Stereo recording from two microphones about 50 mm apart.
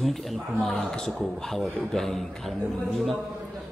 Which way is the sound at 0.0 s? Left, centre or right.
Centre.